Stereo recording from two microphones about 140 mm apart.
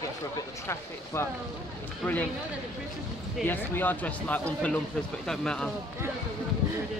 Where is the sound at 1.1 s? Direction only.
20° left (ahead or behind).